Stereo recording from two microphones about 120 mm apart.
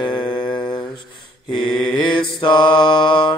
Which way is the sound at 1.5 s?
40° left (ahead or behind).